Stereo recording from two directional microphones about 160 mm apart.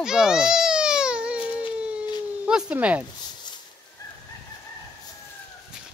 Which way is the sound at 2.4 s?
5° right (ahead or behind).